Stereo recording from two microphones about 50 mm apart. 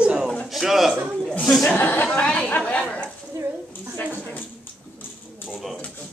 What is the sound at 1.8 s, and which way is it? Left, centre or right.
Speech, left.